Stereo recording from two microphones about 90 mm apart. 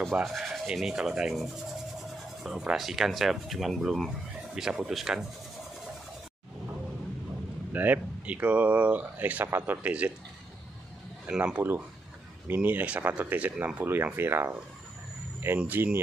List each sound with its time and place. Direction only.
0.2 s rub: centre (ahead or behind)
2.0 s speech: 5° right (ahead or behind)
4.6 s rub: 5° right (ahead or behind)
7.7 s speech: 20° right (ahead or behind)
11.2 s speech: 15° right (ahead or behind)